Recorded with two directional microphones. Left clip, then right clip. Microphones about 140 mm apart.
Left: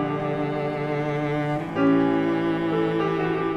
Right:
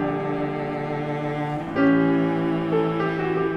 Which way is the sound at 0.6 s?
40° left (ahead or behind).